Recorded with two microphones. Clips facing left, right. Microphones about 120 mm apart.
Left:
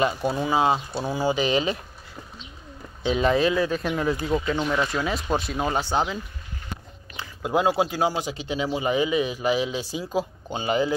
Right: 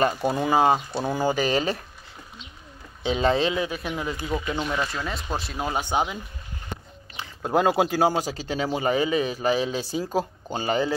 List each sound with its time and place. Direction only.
0.3 s speech: 50° right (ahead or behind)
3.0 s speech: 30° right (ahead or behind)
3.8 s speech: centre (ahead or behind)
5.8 s speech: 15° right (ahead or behind)
7.4 s speech: 50° right (ahead or behind)